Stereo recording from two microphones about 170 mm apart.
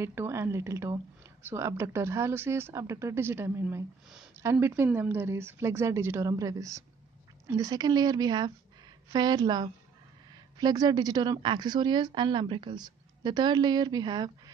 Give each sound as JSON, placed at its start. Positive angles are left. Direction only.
{"t": 0.0, "sound": "a woman's voice", "side_deg": -15}